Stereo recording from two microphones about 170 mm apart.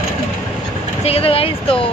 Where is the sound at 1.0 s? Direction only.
35° left (ahead or behind).